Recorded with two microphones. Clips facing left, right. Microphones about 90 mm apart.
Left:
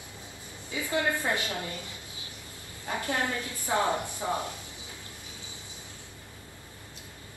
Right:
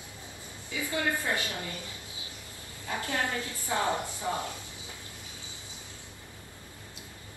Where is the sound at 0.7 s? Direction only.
25° left (ahead or behind).